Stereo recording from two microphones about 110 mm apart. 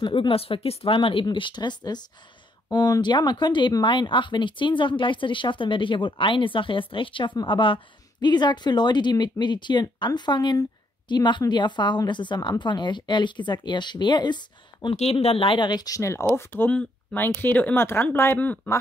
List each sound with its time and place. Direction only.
0.0 s speech: 50° left (ahead or behind)
15.0 s speech: 65° left (ahead or behind); by 18.8 s 20° left (ahead or behind)